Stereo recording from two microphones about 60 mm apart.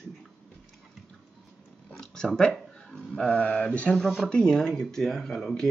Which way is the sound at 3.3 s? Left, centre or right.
Left.